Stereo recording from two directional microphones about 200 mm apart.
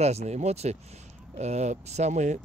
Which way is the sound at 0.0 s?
30° right (ahead or behind).